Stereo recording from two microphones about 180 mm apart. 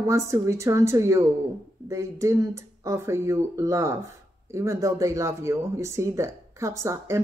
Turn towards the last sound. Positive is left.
turn(degrees=-15)  # may be behind; listen again after turning